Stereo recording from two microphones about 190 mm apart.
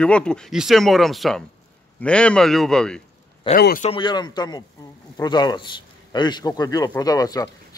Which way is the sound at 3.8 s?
25° left (ahead or behind).